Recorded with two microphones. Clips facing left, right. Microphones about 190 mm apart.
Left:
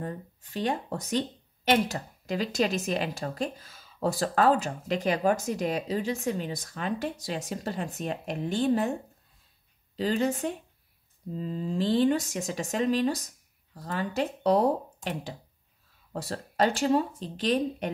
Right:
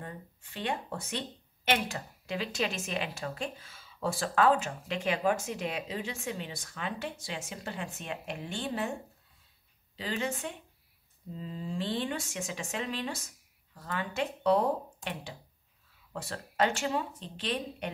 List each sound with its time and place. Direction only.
0.0 s speech: 40° left (ahead or behind)
9.9 s speech: 40° left (ahead or behind)
16.1 s speech: 40° left (ahead or behind)